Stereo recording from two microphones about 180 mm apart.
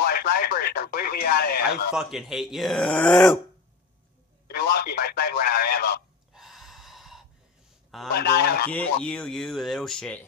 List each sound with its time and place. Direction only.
0.0 s speech: 60° left (ahead or behind)
2.0 s speech: centre (ahead or behind)
4.5 s speech: 60° left (ahead or behind)
6.3 s a sound: centre (ahead or behind)
8.1 s speech: 60° left (ahead or behind)
8.7 s speech: 5° left (ahead or behind)